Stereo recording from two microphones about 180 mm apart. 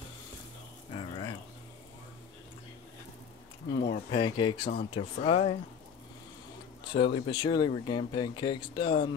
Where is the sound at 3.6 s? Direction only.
60° left (ahead or behind).